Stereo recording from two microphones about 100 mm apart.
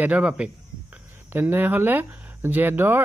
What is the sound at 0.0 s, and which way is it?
A man's voice, 15° right (ahead or behind).